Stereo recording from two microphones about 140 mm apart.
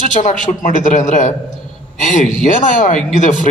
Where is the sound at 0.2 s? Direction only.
65° left (ahead or behind).